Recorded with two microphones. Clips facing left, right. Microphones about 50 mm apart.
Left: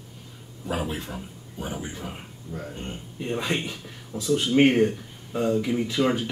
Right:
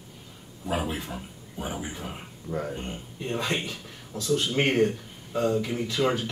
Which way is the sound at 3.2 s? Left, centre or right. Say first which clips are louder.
Left 2 dB; centre.